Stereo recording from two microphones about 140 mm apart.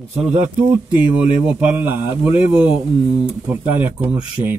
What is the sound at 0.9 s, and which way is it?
Speech, 10° right (ahead or behind).